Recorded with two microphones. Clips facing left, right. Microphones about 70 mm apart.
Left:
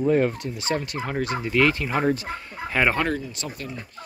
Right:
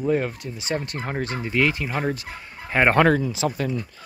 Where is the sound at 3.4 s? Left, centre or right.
Right.